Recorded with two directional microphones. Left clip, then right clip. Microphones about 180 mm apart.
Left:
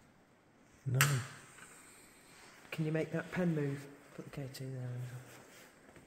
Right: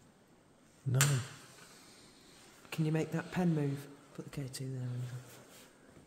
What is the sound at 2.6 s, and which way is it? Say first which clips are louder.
Speech: right 1 dB; 75° right (ahead or behind).